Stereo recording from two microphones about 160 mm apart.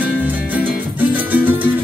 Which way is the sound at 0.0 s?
10° right (ahead or behind).